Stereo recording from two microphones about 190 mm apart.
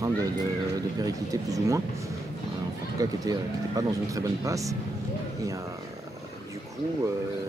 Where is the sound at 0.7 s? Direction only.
20° right (ahead or behind).